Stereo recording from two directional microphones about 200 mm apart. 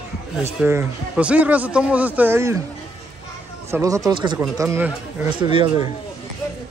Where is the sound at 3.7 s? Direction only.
15° right (ahead or behind).